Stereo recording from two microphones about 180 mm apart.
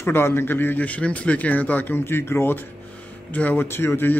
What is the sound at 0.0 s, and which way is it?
A man's voice, 10° left (ahead or behind).